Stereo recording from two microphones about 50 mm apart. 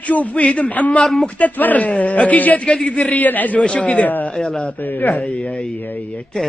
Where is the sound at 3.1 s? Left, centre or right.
Left.